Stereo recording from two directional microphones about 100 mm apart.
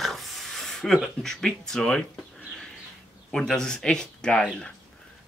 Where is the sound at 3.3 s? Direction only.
5° left (ahead or behind).